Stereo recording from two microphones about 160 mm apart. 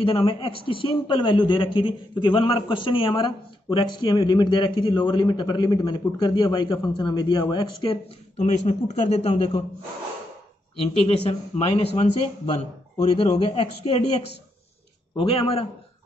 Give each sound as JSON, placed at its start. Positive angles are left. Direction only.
{"t": 0.0, "sound": "a man's voice", "side_deg": 35}
{"t": 10.8, "sound": "a man's voice", "side_deg": 35}
{"t": 15.1, "sound": "a man's voice", "side_deg": 35}